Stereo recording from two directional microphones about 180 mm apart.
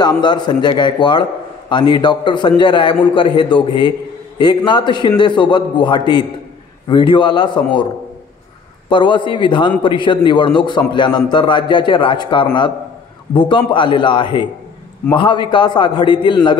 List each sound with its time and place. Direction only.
0.0 s a man's voice: 25° left (ahead or behind)
8.8 s a man's voice: 25° left (ahead or behind)